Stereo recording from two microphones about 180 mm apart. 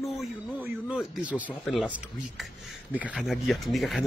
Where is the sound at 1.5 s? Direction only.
10° left (ahead or behind).